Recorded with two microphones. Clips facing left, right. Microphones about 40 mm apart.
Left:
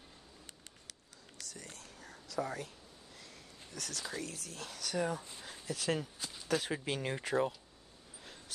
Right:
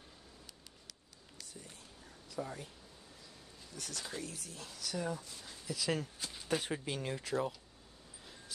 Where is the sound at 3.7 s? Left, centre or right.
Left.